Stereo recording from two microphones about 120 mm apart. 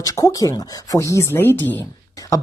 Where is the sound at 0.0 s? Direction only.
30° left (ahead or behind).